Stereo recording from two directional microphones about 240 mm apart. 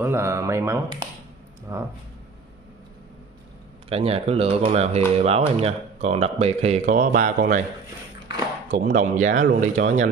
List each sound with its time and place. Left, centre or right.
0.0 s speech: centre
3.9 s speech: right
8.7 s speech: right